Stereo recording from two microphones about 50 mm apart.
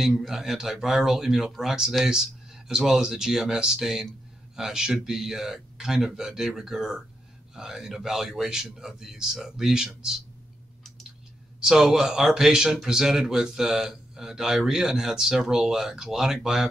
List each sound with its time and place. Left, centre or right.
0.2 s speech: centre
11.6 s speech: centre